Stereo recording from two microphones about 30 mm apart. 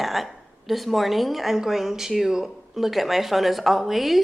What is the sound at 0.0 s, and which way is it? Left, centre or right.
A woman's voice, centre.